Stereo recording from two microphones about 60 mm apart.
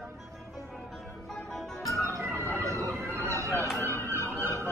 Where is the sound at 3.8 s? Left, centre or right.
Right.